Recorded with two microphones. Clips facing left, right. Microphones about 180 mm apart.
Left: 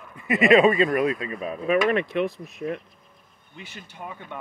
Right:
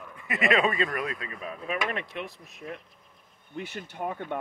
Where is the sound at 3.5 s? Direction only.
55° right (ahead or behind).